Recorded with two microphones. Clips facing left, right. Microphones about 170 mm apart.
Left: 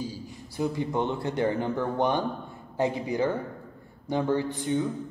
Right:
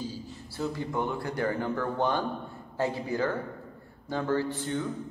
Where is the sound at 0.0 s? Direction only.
15° left (ahead or behind).